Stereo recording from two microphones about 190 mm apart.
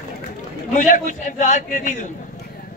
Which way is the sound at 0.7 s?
40° left (ahead or behind).